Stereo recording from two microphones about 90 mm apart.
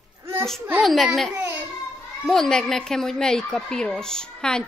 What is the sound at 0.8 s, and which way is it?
A woman's voice, centre (ahead or behind).